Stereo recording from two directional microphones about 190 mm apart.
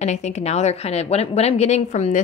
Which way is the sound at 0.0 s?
35° left (ahead or behind).